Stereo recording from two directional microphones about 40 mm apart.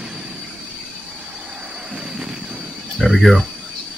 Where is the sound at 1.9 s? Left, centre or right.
Centre.